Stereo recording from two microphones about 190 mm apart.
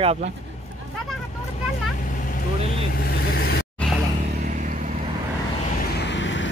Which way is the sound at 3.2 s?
55° left (ahead or behind).